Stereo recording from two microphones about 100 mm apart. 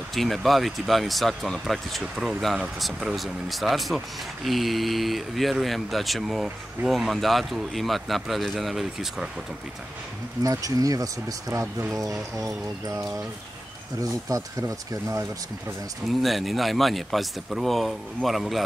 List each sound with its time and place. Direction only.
0.1 s speech: centre (ahead or behind)
10.4 s speech: 35° right (ahead or behind)
16.1 s speech: centre (ahead or behind)